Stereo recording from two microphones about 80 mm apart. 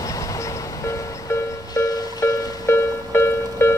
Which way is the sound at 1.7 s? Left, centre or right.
Left.